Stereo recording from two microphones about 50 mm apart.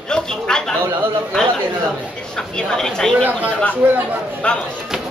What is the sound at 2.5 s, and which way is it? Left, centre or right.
Speech, centre.